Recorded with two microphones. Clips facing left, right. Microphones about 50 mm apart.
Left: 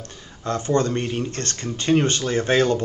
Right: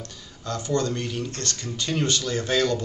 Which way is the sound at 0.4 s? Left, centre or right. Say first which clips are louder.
Left 4 dB; left.